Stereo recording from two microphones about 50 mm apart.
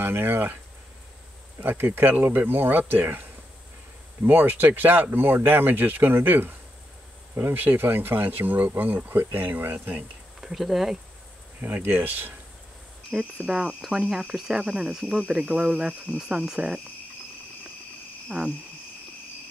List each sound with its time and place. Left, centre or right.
0.0 s speech: right
1.6 s speech: right
10.4 s speech: centre
11.6 s speech: right
13.1 s speech: centre; by 16.2 s right
16.2 s speech: centre
18.3 s speech: right